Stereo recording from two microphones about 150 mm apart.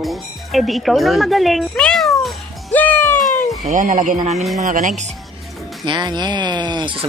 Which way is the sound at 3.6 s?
60° right (ahead or behind).